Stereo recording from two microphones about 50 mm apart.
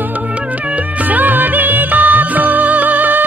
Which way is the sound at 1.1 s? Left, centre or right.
Right.